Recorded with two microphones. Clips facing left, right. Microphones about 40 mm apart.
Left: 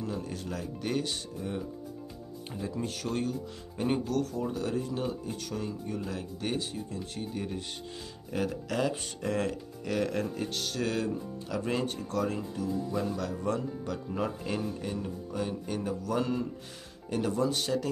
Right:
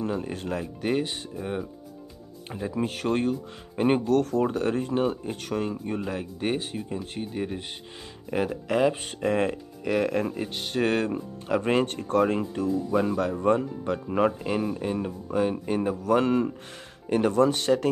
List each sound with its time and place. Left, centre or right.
0.0 s speech: right
0.8 s speech: right
7.2 s speech: right
10.8 s speech: right
14.6 s speech: right